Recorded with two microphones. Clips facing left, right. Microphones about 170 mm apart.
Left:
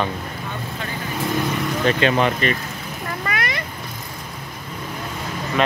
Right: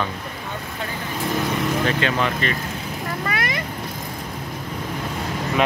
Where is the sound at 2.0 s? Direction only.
20° left (ahead or behind).